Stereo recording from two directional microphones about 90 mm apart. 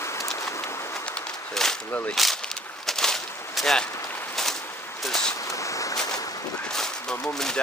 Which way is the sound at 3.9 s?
35° left (ahead or behind).